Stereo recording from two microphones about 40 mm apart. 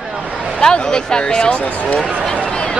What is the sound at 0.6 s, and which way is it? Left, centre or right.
Speech, left.